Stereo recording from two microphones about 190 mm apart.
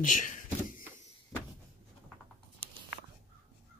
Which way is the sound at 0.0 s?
45° left (ahead or behind).